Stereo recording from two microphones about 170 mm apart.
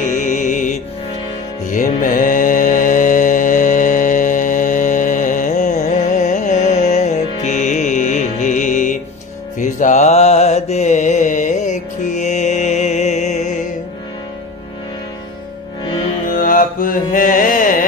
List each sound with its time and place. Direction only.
0.1 s music: 45° left (ahead or behind)
1.7 s mantra: 50° left (ahead or behind)
16.3 s carnatic music: 50° left (ahead or behind)